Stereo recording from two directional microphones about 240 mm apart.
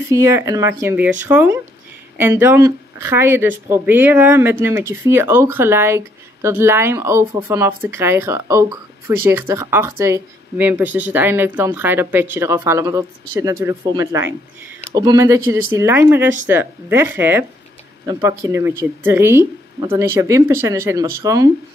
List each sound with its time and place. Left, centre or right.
0.1 s speech: centre